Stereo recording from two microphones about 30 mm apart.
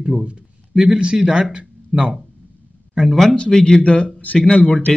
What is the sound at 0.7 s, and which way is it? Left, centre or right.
Speech, centre.